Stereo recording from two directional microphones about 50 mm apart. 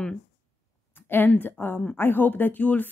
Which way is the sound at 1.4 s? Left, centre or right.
Left.